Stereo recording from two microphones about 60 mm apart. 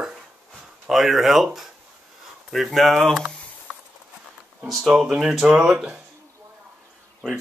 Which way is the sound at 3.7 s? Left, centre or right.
Centre.